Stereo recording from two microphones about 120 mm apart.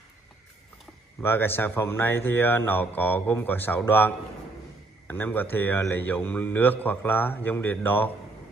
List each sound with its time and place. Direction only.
1.2 s a man's voice: 20° left (ahead or behind)